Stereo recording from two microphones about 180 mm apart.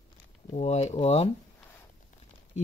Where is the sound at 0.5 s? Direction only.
40° left (ahead or behind).